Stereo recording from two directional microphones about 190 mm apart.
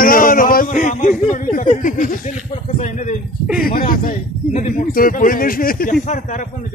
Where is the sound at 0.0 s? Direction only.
45° left (ahead or behind).